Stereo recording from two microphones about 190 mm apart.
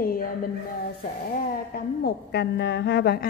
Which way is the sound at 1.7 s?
60° left (ahead or behind).